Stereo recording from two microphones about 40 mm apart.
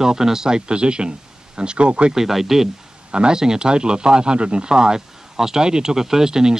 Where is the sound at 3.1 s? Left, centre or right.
Centre.